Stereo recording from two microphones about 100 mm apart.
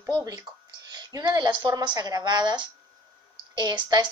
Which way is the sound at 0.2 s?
35° right (ahead or behind).